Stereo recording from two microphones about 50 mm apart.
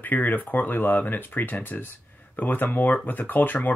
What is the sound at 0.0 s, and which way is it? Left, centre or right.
A man's voice, left.